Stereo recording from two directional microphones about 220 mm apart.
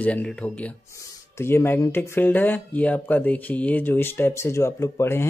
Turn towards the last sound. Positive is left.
turn(degrees=10)  # may be behind; listen again after turning